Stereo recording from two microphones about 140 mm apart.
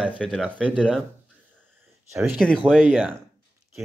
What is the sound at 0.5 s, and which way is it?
Speech, 10° left (ahead or behind).